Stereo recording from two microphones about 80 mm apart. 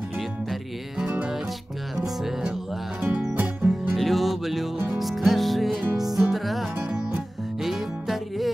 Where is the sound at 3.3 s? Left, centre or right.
Right.